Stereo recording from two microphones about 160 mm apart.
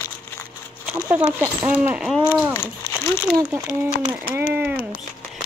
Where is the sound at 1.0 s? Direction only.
10° right (ahead or behind).